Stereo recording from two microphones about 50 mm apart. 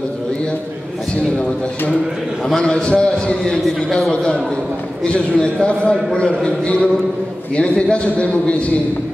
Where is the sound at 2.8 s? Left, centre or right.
Centre.